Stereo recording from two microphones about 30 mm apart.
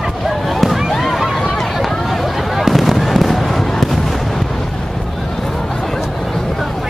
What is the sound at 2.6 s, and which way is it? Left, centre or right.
Fireworks, centre.